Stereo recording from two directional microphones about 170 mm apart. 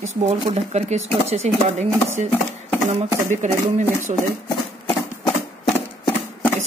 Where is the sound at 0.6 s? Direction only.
40° right (ahead or behind).